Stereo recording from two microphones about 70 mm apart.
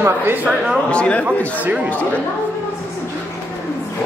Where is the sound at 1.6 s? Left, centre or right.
Right.